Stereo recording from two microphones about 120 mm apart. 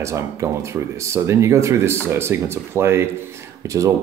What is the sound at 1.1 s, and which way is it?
Speech, 25° right (ahead or behind).